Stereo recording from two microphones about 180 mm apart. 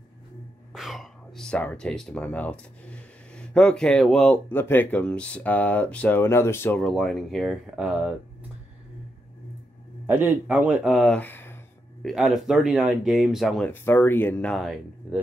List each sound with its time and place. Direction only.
0.7 s speech: centre (ahead or behind)
10.0 s speech: 10° right (ahead or behind); by 11.5 s 10° left (ahead or behind)
12.0 s speech: centre (ahead or behind)
13.7 s speech: 10° left (ahead or behind)